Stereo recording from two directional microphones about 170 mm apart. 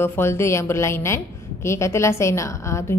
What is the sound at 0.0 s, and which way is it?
A woman's voice, 15° left (ahead or behind).